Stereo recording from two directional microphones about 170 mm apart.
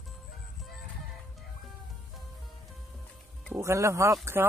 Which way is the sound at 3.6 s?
15° right (ahead or behind).